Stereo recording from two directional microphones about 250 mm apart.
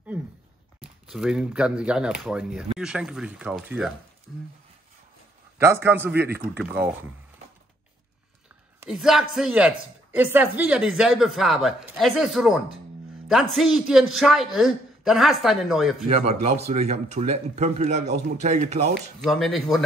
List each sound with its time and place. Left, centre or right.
1.0 s speech: centre
5.6 s a man's voice: centre
8.8 s speech: centre
16.1 s speech: right
19.2 s speech: centre